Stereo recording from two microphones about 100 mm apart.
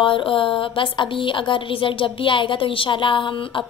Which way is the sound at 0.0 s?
60° left (ahead or behind).